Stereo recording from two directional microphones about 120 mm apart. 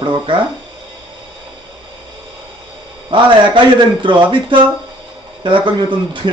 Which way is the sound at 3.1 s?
40° right (ahead or behind).